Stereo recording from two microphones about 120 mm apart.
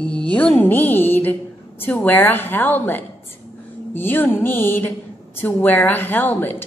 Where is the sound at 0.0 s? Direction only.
5° left (ahead or behind).